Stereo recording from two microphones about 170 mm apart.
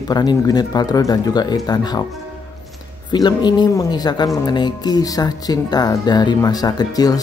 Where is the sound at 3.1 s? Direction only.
25° left (ahead or behind).